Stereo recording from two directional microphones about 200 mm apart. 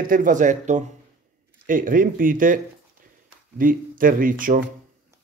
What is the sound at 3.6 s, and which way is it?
Speech, 45° right (ahead or behind).